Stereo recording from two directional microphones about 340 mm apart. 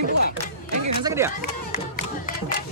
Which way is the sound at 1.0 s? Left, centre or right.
Centre.